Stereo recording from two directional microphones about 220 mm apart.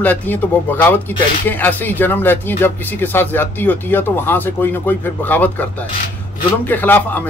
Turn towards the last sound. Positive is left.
turn(degrees=10)  # may be behind; listen again after turning